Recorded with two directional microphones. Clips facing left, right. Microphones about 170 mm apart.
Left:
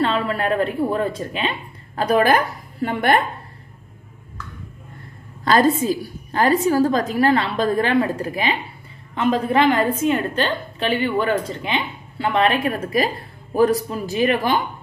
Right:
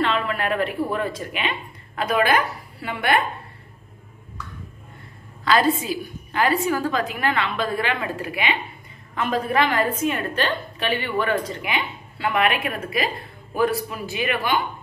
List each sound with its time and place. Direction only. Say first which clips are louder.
0.0 s a woman's voice: left 3 dB; 30° left (ahead or behind)
5.4 s a woman's voice: left 3 dB; 45° left (ahead or behind)
9.1 s a woman's voice: left 4 dB; 25° left (ahead or behind)